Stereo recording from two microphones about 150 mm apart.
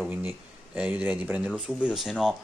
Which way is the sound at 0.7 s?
10° right (ahead or behind).